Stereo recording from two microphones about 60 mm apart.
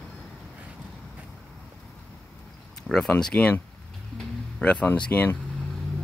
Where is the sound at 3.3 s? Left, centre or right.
Left.